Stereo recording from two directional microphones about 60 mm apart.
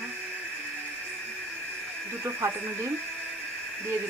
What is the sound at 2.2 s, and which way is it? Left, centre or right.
Speech, right.